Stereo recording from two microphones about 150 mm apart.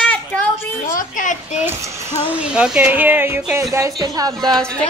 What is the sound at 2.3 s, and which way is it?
A woman's voice, 5° right (ahead or behind).